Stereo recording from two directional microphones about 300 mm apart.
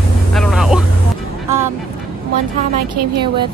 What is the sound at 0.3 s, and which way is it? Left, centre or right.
Vehicle, centre.